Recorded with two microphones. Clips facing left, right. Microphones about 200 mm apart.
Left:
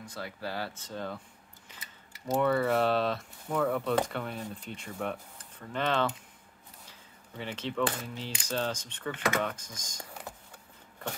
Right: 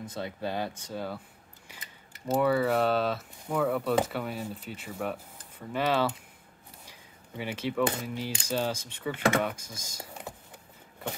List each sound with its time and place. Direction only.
0.0 s speech: 20° right (ahead or behind)
1.7 s keys jangling: 10° right (ahead or behind)
2.3 s speech: 5° right (ahead or behind)
6.9 s a sound: 10° right (ahead or behind)
7.9 s coin: 15° right (ahead or behind)